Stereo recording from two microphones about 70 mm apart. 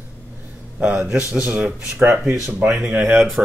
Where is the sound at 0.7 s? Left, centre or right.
Centre.